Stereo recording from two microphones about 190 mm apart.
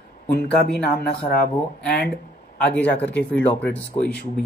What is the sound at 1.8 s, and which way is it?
Speech, 60° left (ahead or behind).